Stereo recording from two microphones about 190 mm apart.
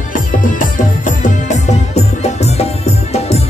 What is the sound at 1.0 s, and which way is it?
Music, 40° left (ahead or behind).